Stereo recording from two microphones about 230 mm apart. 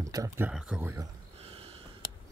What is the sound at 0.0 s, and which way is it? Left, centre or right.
Speech, centre.